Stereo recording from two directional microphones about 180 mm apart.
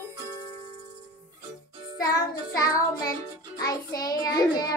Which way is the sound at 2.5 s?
20° left (ahead or behind).